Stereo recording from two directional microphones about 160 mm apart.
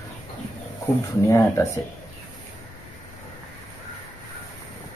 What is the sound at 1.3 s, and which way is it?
Speech, 20° left (ahead or behind).